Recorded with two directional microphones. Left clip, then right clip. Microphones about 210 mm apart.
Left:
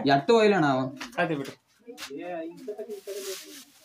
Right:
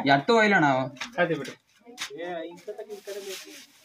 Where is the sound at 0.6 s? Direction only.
5° left (ahead or behind).